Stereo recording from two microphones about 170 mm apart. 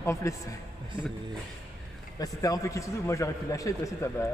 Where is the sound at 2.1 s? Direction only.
20° left (ahead or behind).